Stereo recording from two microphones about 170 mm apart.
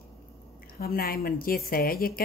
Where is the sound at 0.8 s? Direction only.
60° left (ahead or behind).